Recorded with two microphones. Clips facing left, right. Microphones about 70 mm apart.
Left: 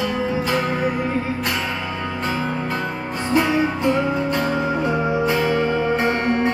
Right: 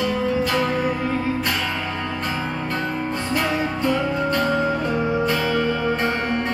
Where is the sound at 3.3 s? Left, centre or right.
Centre.